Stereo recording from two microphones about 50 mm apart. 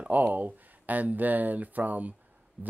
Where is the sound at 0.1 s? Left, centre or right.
Right.